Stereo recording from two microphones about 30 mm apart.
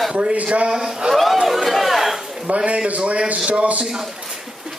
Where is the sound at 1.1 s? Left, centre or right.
Centre.